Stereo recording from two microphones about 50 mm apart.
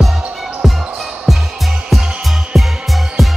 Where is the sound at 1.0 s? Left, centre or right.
Centre.